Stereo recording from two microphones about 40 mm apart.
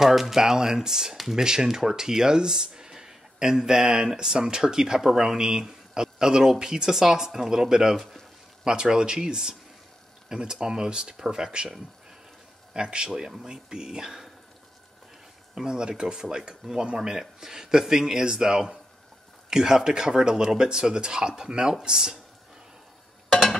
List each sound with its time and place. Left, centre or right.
0.0 s speech: centre
8.6 s speech: centre
12.7 s speech: right
15.5 s speech: centre